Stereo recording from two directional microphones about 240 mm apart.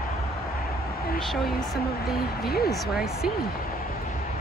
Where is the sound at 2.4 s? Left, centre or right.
Left.